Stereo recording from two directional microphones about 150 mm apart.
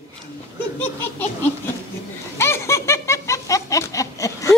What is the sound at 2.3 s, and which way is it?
Laughter, 15° left (ahead or behind).